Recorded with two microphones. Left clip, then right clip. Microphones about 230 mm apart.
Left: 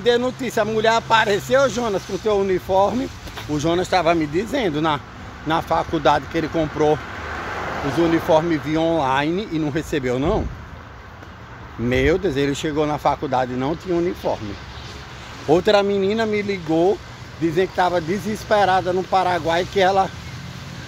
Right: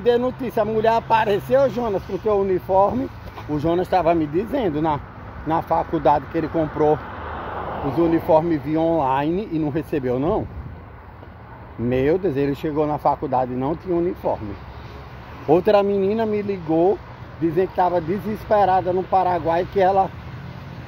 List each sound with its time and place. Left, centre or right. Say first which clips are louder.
0.0 s speech: even; centre
11.9 s speech: left 1 dB; centre
15.4 s speech: even; centre